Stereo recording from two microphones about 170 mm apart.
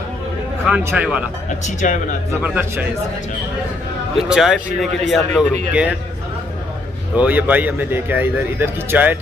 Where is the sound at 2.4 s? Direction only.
10° right (ahead or behind).